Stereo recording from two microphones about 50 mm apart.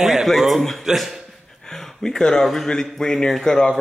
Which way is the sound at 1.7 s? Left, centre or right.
Centre.